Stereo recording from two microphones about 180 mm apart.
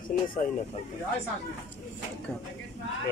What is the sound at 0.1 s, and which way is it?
Speech, 50° left (ahead or behind).